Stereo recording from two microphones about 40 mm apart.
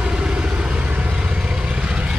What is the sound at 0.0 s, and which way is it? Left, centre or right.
Vehicle, right.